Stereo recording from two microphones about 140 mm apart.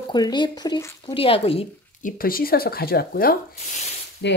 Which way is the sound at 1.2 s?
45° left (ahead or behind).